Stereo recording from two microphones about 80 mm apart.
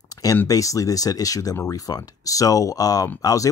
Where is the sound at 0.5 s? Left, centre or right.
Left.